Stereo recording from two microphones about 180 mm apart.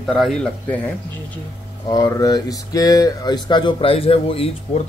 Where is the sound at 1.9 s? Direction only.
20° left (ahead or behind).